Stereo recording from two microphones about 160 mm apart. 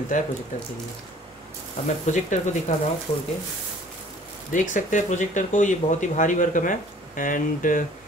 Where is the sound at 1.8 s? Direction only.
50° left (ahead or behind).